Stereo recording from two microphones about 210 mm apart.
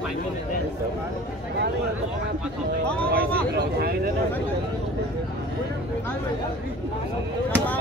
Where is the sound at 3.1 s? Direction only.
45° right (ahead or behind).